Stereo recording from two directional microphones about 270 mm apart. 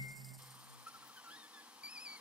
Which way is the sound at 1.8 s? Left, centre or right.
Centre.